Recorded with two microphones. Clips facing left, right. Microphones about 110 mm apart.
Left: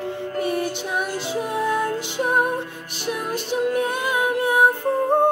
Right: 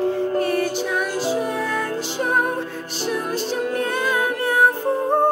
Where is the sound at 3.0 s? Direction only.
30° right (ahead or behind).